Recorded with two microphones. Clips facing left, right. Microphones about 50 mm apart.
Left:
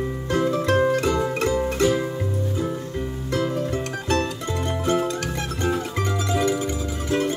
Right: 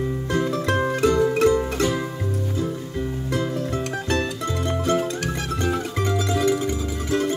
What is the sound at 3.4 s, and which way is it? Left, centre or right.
Music, left.